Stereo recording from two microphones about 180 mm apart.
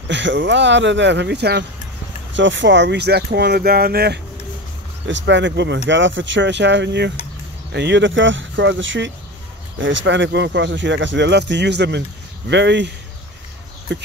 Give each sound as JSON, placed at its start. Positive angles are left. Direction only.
{"t": 0.1, "sound": "speech", "side_deg": -85}
{"t": 2.3, "sound": "speech", "side_deg": -90}
{"t": 5.0, "sound": "speech", "side_deg": -90}